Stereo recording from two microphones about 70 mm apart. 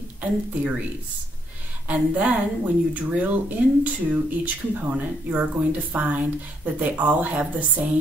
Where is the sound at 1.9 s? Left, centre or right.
Centre.